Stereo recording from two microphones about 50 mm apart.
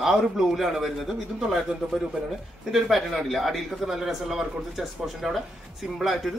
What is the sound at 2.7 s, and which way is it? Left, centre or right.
A man's voice, centre.